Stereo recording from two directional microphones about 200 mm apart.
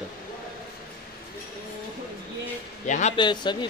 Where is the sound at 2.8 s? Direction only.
40° left (ahead or behind).